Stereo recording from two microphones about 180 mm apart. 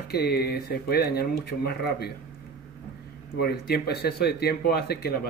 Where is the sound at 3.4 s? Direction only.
60° left (ahead or behind).